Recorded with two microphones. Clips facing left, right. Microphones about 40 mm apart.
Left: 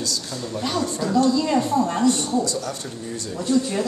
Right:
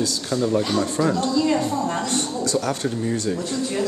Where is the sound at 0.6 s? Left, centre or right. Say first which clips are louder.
Left 2 dB; centre.